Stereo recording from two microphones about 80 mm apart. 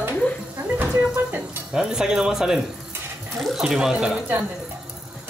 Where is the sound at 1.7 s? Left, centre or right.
Centre.